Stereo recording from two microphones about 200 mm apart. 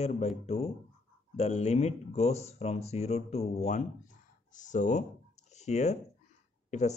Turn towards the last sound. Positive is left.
turn(degrees=35)  # may be behind; listen again after turning